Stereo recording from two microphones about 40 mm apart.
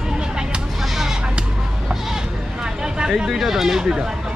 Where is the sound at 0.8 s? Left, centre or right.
Centre.